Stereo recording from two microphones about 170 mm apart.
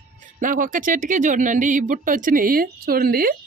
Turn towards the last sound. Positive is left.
turn(degrees=-60)  # may be behind; listen again after turning